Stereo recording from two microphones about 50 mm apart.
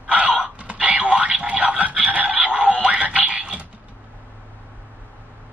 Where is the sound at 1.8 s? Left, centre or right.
Right.